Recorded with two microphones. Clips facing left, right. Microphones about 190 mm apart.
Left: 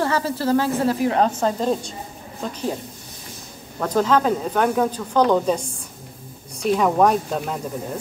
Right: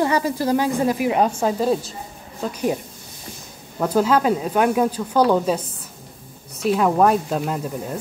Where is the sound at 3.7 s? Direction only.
10° right (ahead or behind).